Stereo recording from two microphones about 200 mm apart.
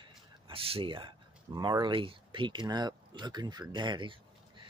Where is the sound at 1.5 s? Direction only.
20° right (ahead or behind).